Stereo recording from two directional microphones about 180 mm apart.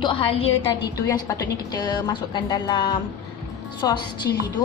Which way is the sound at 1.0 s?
20° left (ahead or behind).